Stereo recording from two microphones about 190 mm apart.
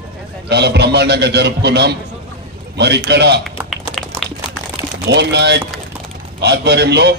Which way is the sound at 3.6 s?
Centre (ahead or behind).